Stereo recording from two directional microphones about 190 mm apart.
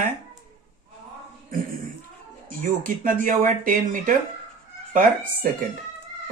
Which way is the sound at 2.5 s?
45° right (ahead or behind).